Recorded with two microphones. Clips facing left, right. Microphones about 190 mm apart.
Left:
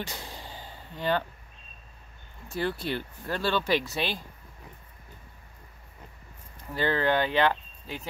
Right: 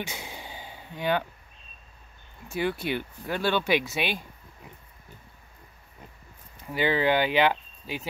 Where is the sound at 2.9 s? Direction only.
10° right (ahead or behind).